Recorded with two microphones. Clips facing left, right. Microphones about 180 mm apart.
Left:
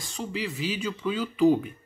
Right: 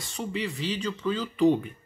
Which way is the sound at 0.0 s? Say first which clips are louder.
Right 1 dB; centre (ahead or behind).